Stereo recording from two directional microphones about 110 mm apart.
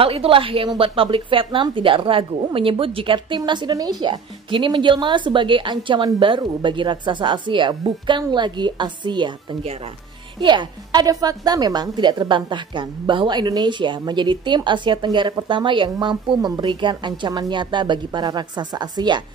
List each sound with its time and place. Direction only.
0.0 s a woman's voice: 55° right (ahead or behind); by 19.2 s 40° right (ahead or behind)